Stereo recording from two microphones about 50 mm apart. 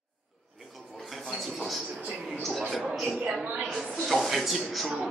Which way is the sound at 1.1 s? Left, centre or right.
Centre.